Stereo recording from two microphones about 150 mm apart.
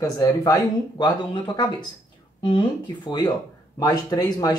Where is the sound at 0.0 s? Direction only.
25° left (ahead or behind).